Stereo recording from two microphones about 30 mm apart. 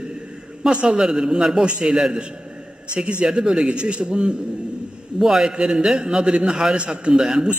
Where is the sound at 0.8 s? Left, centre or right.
Right.